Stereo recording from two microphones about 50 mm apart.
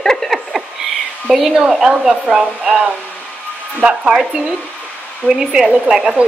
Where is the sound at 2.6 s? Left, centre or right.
Centre.